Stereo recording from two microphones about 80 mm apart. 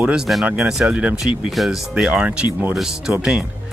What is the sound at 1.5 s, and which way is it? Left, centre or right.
Speech, centre.